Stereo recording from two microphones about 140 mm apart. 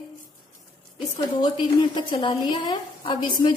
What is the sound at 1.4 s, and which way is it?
A woman's voice, 30° left (ahead or behind).